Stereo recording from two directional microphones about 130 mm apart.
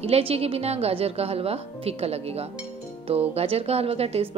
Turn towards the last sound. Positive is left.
turn(degrees=-50)  # may be behind; listen again after turning